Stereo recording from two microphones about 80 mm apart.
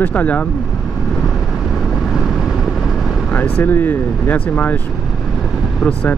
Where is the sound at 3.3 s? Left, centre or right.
Left.